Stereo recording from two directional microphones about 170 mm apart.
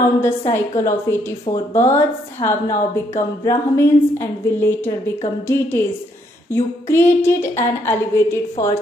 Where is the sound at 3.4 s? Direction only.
15° left (ahead or behind).